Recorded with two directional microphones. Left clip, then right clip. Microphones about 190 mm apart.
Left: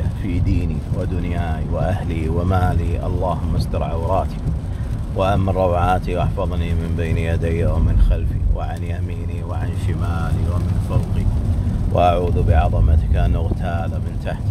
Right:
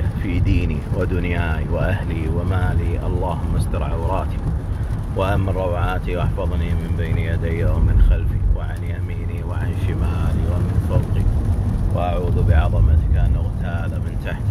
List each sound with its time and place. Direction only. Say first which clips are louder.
0.2 s a sound: right 1 dB; 10° left (ahead or behind)
1.1 s speech: right 2 dB; 5° left (ahead or behind)
2.0 s speech: left 3 dB; 25° left (ahead or behind)
11.9 s speech: left 8 dB; 40° left (ahead or behind)
12.4 s speech: left 4 dB; 25° left (ahead or behind)